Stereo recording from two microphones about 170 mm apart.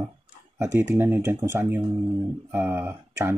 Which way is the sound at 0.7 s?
15° right (ahead or behind).